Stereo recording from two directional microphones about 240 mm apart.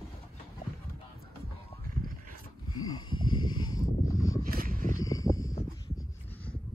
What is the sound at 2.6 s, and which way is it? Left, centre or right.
Wild animals, left.